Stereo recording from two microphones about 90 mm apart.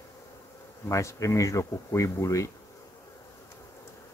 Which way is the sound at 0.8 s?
35° left (ahead or behind).